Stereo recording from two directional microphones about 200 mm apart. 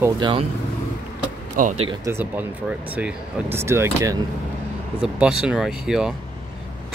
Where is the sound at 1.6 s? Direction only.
40° right (ahead or behind).